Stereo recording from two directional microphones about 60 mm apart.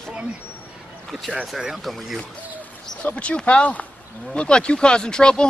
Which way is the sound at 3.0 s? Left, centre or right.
Left.